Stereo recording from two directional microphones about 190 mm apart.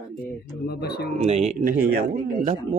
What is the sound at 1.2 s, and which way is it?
Speech, 35° right (ahead or behind).